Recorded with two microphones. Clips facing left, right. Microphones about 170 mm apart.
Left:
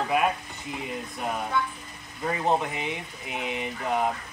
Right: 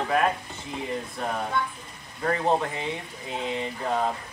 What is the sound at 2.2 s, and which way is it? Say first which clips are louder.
Speech: right 1 dB; 15° left (ahead or behind).